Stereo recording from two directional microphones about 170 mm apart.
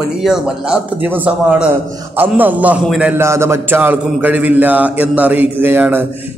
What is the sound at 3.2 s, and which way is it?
A man's voice, 15° right (ahead or behind).